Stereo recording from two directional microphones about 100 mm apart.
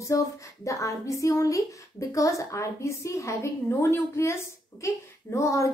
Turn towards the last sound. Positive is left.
turn(degrees=30)  # may be behind; listen again after turning